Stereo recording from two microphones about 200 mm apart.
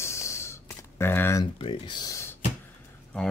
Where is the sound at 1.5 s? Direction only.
25° left (ahead or behind).